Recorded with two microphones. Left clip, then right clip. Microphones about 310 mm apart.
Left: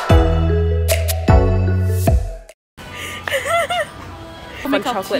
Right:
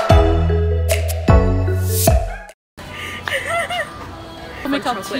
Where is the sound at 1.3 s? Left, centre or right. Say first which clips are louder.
Even; centre.